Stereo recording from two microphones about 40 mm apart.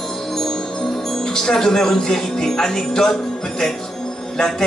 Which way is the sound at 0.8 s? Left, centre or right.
Centre.